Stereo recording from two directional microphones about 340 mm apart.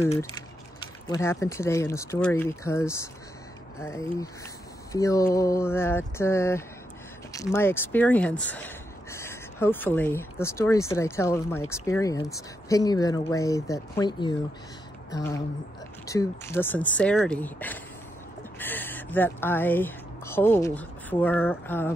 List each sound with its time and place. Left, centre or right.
1.0 s speech: centre